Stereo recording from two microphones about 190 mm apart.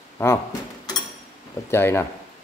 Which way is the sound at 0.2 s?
10° left (ahead or behind).